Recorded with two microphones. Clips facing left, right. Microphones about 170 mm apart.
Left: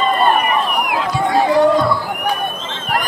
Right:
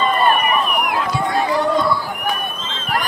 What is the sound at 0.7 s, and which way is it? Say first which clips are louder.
Run: left 1 dB; 20° left (ahead or behind).